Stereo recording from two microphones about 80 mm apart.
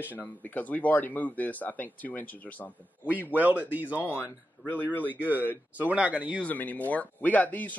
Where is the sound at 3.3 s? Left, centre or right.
Right.